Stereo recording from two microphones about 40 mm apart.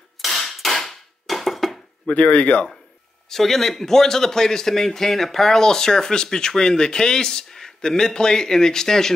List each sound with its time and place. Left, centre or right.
0.2 s hammer: centre
0.8 s a sound: centre
2.0 s speech: left
3.3 s a man's voice: centre